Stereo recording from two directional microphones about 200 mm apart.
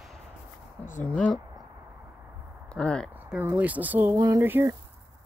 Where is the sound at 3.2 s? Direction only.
10° right (ahead or behind).